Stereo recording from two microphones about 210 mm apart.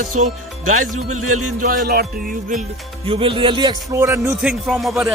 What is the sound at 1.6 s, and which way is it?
Music, 45° right (ahead or behind).